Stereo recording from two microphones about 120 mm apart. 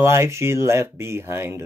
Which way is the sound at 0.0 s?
25° right (ahead or behind).